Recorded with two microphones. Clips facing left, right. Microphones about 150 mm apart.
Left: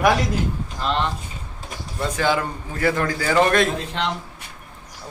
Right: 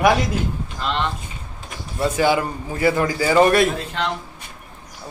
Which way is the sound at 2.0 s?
10° right (ahead or behind).